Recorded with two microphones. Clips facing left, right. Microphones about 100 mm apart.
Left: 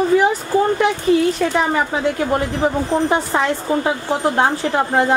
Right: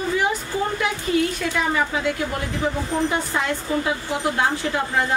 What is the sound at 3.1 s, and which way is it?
A woman's voice, 50° left (ahead or behind).